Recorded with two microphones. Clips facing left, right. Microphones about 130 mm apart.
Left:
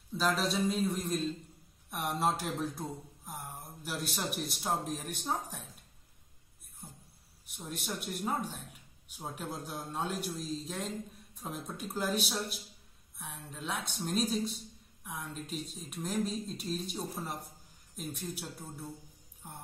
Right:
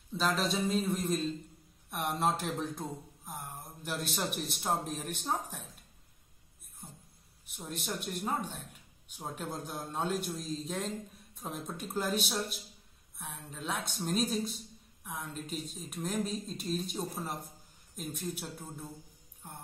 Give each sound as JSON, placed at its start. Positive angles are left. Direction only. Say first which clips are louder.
{"t": 0.2, "sound": "speech", "louder": "even", "side_deg": 0}
{"t": 7.4, "sound": "speech", "louder": "right 1 dB", "side_deg": 0}
{"t": 9.3, "sound": "speech", "louder": "right 1 dB", "side_deg": 0}